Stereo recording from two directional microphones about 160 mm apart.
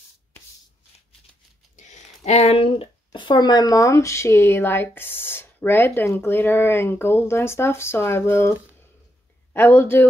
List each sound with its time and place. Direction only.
1.8 s speech: 45° left (ahead or behind); by 10.0 s 15° left (ahead or behind)